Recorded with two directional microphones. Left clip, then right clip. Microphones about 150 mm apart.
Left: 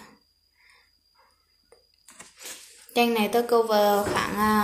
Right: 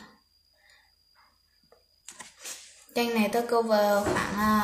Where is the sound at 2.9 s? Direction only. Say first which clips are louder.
Left 4 dB; 35° left (ahead or behind).